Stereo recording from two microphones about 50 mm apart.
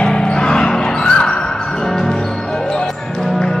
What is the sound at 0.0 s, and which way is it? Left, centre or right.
Music, centre.